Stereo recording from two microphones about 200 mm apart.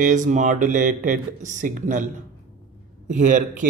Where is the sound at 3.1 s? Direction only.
40° right (ahead or behind).